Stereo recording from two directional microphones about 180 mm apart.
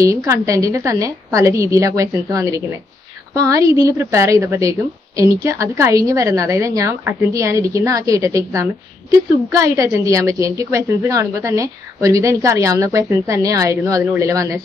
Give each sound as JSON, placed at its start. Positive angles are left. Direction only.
{"t": 0.0, "sound": "a woman's voice", "side_deg": -15}